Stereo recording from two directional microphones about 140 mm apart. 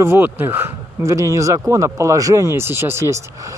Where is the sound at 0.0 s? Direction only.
15° right (ahead or behind).